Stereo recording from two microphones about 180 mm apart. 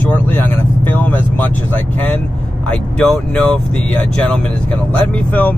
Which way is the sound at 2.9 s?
5° left (ahead or behind).